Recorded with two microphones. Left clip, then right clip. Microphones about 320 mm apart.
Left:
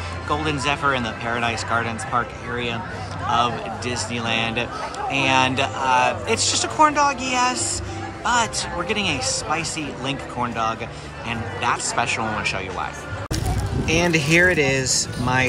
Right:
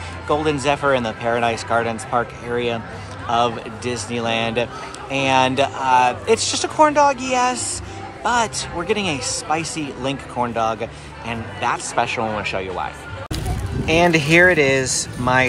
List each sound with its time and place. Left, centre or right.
0.3 s a man's voice: centre